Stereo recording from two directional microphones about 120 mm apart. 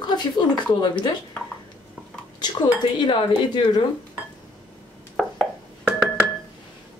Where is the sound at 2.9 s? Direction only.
40° left (ahead or behind).